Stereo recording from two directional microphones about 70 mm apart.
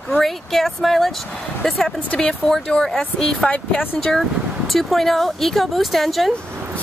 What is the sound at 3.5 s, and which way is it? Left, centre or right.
Speech, left.